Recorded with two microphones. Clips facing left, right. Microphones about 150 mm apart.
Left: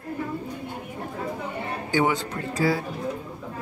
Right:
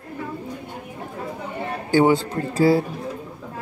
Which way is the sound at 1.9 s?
30° right (ahead or behind).